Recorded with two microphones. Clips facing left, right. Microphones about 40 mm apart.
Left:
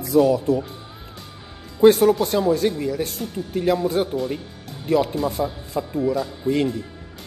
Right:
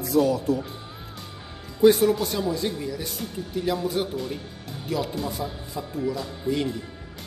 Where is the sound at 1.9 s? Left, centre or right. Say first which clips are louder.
Left 4 dB; left.